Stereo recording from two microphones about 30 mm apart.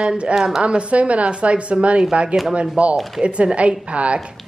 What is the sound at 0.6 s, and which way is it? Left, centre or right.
A woman's voice, right.